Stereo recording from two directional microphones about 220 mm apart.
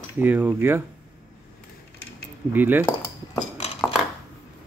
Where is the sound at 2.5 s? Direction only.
10° right (ahead or behind).